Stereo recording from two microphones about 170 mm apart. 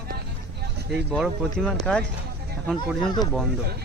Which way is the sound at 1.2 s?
Centre (ahead or behind).